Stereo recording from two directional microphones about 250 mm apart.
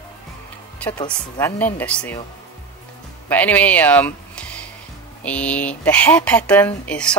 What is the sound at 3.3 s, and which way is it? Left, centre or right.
Speech, centre.